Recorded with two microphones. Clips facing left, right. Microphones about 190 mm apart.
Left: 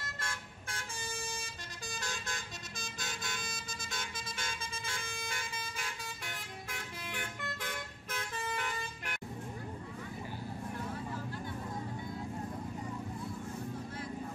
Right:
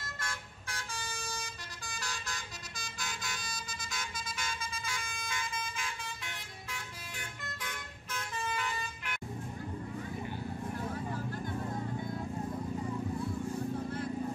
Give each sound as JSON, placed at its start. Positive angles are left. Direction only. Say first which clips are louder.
{"t": 3.1, "sound": "vehicle", "louder": "even", "side_deg": 50}
{"t": 5.3, "sound": "vehicle", "louder": "right 3 dB", "side_deg": 35}
{"t": 6.7, "sound": "vehicle", "louder": "left 2 dB", "side_deg": 55}